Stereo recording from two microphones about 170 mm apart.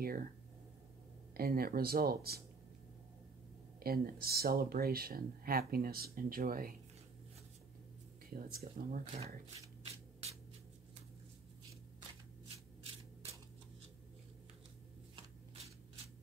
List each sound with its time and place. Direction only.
0.0 s speech: 60° right (ahead or behind)
1.3 s speech: 60° right (ahead or behind)
3.8 s speech: 60° right (ahead or behind)
8.3 s speech: 60° right (ahead or behind)
12.8 s a sound: 35° right (ahead or behind)
15.1 s shuffling cards: 35° right (ahead or behind)